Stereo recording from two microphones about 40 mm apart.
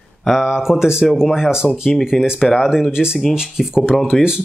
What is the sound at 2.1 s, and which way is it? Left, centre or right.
Speech, centre.